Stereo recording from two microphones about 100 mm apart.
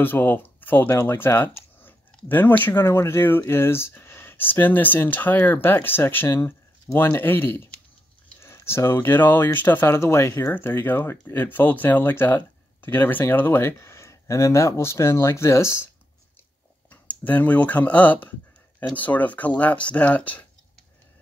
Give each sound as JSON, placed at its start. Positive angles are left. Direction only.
{"t": 0.0, "sound": "speech", "side_deg": 20}
{"t": 16.9, "sound": "speech", "side_deg": 15}